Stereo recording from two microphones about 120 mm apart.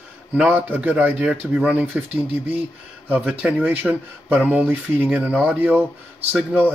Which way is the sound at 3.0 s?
10° right (ahead or behind).